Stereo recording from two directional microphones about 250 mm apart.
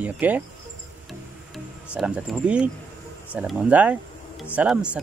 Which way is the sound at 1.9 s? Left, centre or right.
Centre.